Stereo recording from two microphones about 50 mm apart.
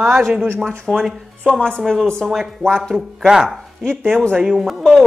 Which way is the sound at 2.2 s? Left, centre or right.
Centre.